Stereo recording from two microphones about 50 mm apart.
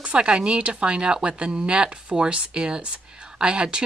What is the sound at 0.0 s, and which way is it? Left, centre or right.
Speech, right.